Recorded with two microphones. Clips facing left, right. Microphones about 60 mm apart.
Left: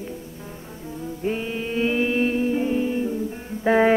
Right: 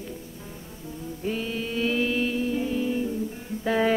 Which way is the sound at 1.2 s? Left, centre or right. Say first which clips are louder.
Left 3 dB; left.